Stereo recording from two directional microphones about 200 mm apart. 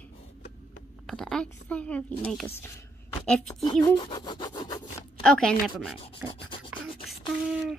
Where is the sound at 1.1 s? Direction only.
Centre (ahead or behind).